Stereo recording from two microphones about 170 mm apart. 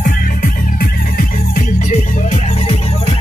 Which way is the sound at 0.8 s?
60° left (ahead or behind).